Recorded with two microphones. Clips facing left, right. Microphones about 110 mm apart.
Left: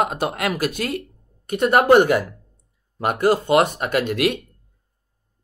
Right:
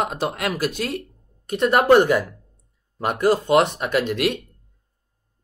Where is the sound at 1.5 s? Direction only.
60° left (ahead or behind).